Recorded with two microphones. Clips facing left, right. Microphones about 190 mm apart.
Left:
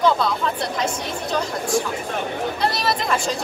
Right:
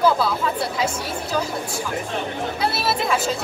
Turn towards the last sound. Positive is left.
turn(degrees=-5)  # may be behind; listen again after turning